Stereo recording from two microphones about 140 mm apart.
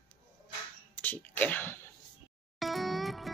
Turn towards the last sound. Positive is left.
turn(degrees=0)  # may be behind; listen again after turning